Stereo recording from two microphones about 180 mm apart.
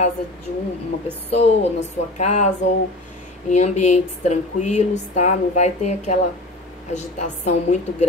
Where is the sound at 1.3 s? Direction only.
35° left (ahead or behind).